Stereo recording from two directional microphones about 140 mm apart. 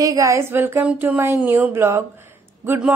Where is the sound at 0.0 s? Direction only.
25° right (ahead or behind).